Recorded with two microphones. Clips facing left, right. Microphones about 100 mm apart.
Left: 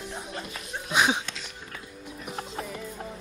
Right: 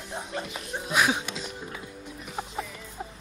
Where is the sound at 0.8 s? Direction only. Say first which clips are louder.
Left 1 dB; 5° left (ahead or behind).